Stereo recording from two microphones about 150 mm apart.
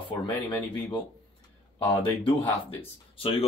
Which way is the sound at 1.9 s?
35° left (ahead or behind).